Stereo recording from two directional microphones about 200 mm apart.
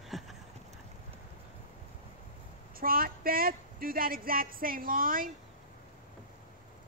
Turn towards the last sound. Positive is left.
turn(degrees=-45)  # may be behind; listen again after turning